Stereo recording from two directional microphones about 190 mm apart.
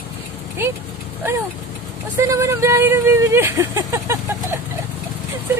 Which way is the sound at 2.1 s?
15° right (ahead or behind).